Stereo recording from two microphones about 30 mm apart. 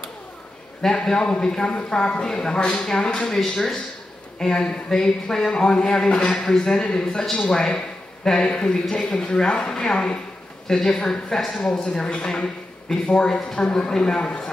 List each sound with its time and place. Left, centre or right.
0.8 s a woman's voice: left
3.3 s speech: centre
4.4 s a woman's voice: left
7.6 s a sound: left
8.4 s a woman's voice: left